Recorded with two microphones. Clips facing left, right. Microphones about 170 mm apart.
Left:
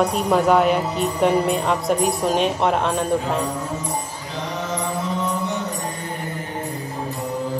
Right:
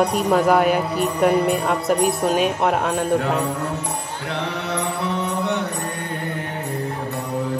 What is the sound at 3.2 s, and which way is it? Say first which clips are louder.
Music: right 2 dB; 65° right (ahead or behind).